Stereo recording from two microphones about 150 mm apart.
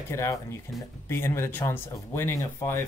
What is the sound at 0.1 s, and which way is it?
Speech, 15° left (ahead or behind).